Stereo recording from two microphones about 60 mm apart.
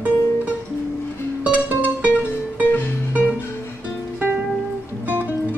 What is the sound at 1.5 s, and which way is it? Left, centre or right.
Music, right.